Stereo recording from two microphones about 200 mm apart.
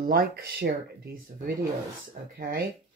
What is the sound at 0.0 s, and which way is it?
Speech, 50° right (ahead or behind).